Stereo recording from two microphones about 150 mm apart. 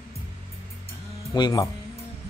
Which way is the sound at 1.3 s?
25° left (ahead or behind).